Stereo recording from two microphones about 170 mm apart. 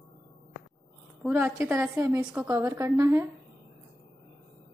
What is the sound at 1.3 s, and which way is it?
A woman's voice, 10° right (ahead or behind).